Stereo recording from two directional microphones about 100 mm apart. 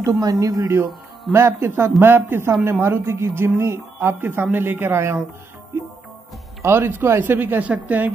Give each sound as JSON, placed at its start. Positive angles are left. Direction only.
{"t": 0.2, "sound": "a man's voice", "side_deg": -40}
{"t": 1.3, "sound": "speech", "side_deg": -25}
{"t": 6.6, "sound": "speech", "side_deg": -25}